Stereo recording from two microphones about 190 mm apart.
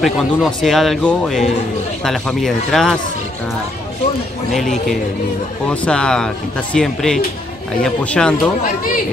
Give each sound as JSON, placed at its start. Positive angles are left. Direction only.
{"t": 0.0, "sound": "speech", "side_deg": 0}
{"t": 5.7, "sound": "speech", "side_deg": 5}
{"t": 8.6, "sound": "speech", "side_deg": 45}